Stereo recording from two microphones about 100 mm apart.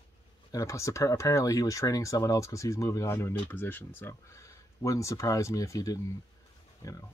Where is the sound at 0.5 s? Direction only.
30° left (ahead or behind).